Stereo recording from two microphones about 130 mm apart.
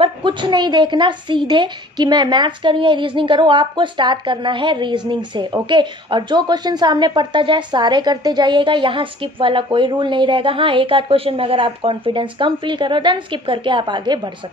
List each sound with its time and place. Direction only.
0.0 s a woman's voice: 40° right (ahead or behind)